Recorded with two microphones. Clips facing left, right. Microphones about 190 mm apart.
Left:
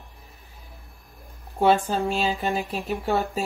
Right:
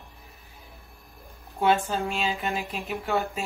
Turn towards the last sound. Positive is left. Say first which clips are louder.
# left 3 dB
turn(degrees=35)  # may be behind; listen again after turning